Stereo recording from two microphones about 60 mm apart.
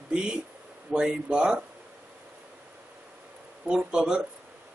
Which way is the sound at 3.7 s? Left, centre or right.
Centre.